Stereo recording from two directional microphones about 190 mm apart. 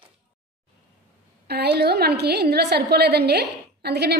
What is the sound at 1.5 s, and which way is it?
A woman's voice, 60° right (ahead or behind).